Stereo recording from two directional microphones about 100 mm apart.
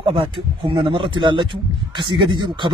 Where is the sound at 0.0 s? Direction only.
60° right (ahead or behind).